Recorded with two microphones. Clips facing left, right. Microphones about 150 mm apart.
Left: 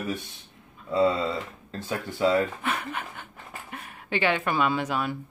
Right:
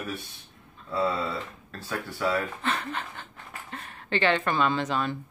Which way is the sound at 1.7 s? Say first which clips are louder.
Left 3 dB; 20° left (ahead or behind).